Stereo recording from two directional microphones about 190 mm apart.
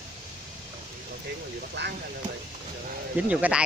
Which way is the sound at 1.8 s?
65° right (ahead or behind).